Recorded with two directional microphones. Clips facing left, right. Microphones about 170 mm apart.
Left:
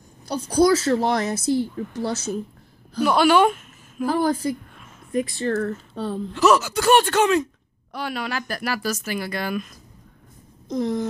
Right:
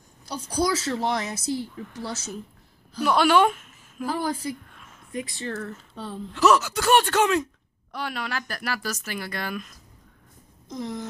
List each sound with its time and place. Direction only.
0.2 s a woman's voice: 60° left (ahead or behind)
3.1 s speech: 5° left (ahead or behind)
4.0 s a woman's voice: 55° left (ahead or behind)
6.3 s speech: 5° left (ahead or behind)
10.7 s a woman's voice: 55° left (ahead or behind)